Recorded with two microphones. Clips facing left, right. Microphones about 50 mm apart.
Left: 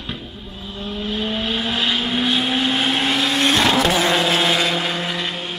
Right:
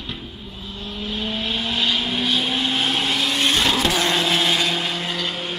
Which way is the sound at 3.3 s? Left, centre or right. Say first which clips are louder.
Left 3 dB; centre.